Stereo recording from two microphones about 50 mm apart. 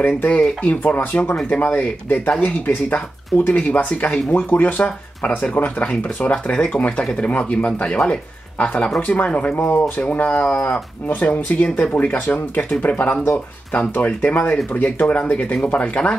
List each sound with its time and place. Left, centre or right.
0.3 s speech: left